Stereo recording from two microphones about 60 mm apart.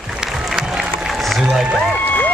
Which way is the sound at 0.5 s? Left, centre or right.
Centre.